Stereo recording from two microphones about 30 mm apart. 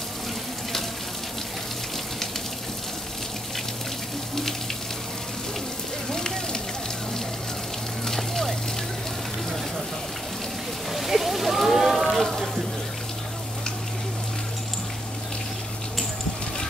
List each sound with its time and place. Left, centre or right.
6.0 s fire: centre
8.1 s vehicle: centre
10.9 s a sound: centre